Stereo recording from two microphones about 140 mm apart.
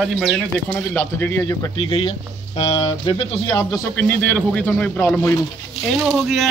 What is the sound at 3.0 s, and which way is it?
Speech, 40° left (ahead or behind).